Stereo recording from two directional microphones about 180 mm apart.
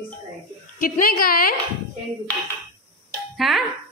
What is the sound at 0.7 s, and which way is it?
Speech, 50° left (ahead or behind).